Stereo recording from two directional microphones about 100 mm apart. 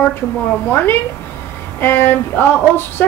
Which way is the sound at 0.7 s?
20° left (ahead or behind).